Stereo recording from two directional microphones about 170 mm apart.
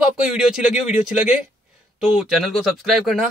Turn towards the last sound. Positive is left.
turn(degrees=0)  # may be behind; listen again after turning